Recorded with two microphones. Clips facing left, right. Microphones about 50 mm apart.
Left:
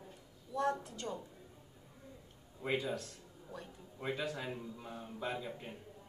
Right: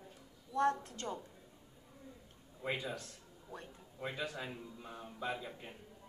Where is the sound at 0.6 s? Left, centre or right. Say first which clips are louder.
Right 2 dB; right.